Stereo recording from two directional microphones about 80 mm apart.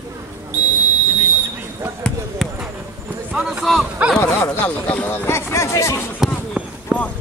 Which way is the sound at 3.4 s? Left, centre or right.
Centre.